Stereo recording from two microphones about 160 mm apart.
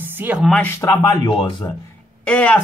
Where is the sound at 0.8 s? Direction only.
20° left (ahead or behind).